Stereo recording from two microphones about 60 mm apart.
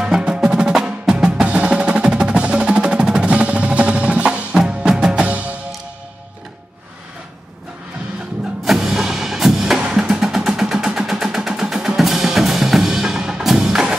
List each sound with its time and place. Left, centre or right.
0.0 s music: centre
1.4 s percussion: centre
4.6 s music: centre
8.6 s music: centre
9.8 s drum: centre
10.0 s music: centre